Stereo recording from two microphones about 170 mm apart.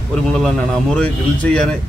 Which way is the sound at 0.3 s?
Centre (ahead or behind).